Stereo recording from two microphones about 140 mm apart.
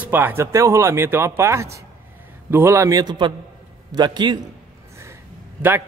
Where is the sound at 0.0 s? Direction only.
15° right (ahead or behind); by 4.4 s 30° right (ahead or behind).